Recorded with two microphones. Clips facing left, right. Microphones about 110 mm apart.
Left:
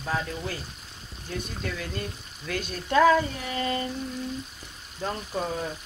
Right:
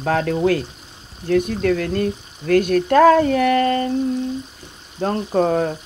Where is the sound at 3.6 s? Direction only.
50° right (ahead or behind).